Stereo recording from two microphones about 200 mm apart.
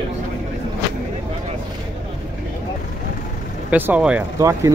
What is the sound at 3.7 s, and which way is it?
Speech, 10° right (ahead or behind).